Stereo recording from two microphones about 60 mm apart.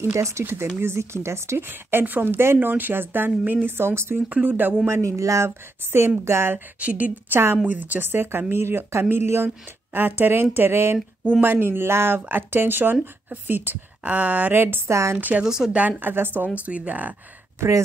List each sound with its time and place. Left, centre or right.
0.0 s a woman's voice: right
3.6 s a woman's voice: right
4.3 s a woman's voice: right
4.8 s speech: right
5.9 s a woman's voice: right
6.8 s a woman's voice: right
14.0 s a woman's voice: right
14.9 s speech: right
15.1 s a woman's voice: right
15.4 s speech: centre
16.0 s speech: right
16.5 s a woman's voice: right